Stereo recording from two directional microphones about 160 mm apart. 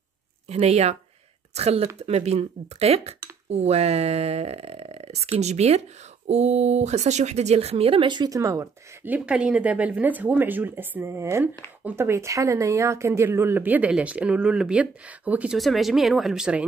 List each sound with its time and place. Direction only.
0.5 s speech: 40° right (ahead or behind); by 16.6 s 5° right (ahead or behind)